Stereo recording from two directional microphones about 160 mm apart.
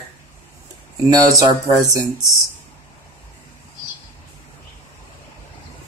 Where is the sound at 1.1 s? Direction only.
20° right (ahead or behind).